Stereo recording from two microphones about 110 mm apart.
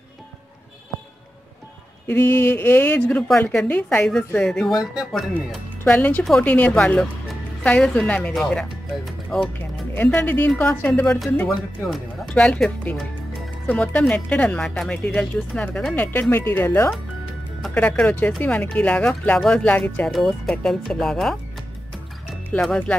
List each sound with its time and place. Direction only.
2.0 s speech: 15° left (ahead or behind)
5.9 s speech: 15° left (ahead or behind)
9.9 s speech: 15° left (ahead or behind)
11.4 s speech: 5° left (ahead or behind); by 16.9 s 25° left (ahead or behind)
17.7 s speech: 10° left (ahead or behind)
22.5 s speech: 10° left (ahead or behind)